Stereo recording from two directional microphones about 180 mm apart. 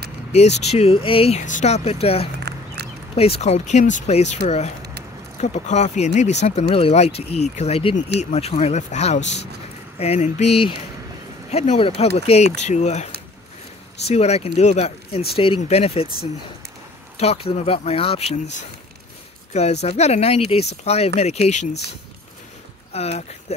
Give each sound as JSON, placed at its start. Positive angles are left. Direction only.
{"t": 0.3, "sound": "speech", "side_deg": 40}
{"t": 2.5, "sound": "a sound", "side_deg": -65}
{"t": 3.2, "sound": "speech", "side_deg": 35}
{"t": 17.2, "sound": "speech", "side_deg": 35}
{"t": 22.9, "sound": "speech", "side_deg": 35}